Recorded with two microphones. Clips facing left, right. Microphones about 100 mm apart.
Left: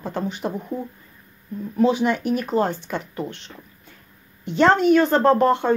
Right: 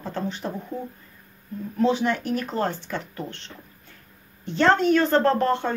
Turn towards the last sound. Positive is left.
turn(degrees=15)  # may be behind; listen again after turning